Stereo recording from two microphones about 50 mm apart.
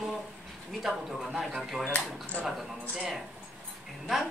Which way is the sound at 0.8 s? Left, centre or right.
Centre.